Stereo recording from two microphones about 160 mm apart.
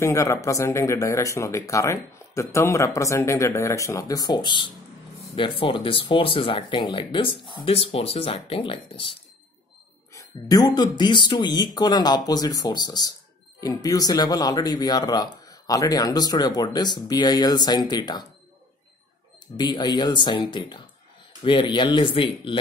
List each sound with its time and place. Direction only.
0.0 s speech: 20° left (ahead or behind); by 9.1 s 35° left (ahead or behind)
10.1 s speech: 25° left (ahead or behind)
19.4 s speech: 25° left (ahead or behind)